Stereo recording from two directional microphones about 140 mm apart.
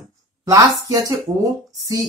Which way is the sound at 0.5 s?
25° right (ahead or behind).